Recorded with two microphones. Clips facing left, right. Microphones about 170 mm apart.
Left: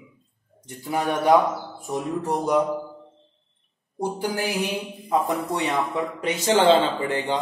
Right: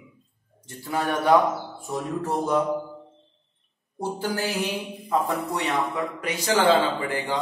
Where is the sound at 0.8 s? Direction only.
15° left (ahead or behind).